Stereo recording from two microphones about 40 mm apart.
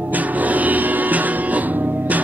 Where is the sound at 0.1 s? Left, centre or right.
Right.